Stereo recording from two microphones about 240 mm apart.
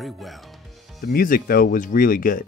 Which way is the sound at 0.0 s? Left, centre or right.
Centre.